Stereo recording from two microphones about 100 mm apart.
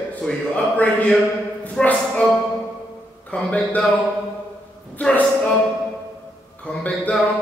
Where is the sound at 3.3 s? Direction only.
15° left (ahead or behind).